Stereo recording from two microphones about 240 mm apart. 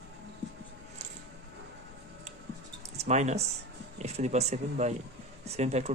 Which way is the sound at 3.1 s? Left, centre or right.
Right.